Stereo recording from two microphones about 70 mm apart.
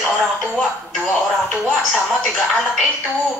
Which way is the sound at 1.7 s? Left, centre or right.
Centre.